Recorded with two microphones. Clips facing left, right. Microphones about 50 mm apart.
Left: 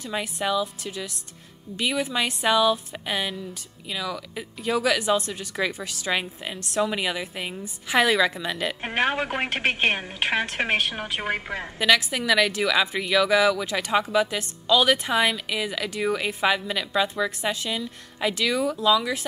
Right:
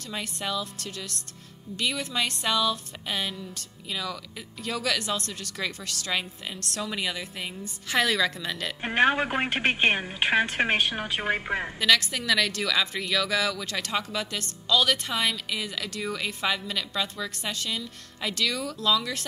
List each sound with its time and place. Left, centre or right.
0.0 s a woman's voice: centre
9.0 s speech: centre
11.1 s a woman's voice: centre
11.8 s a woman's voice: centre